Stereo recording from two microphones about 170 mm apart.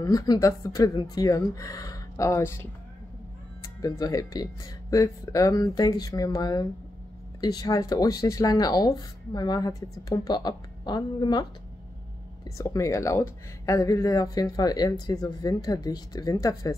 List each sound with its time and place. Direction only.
0.0 s speech: 20° left (ahead or behind)
12.4 s speech: 20° left (ahead or behind)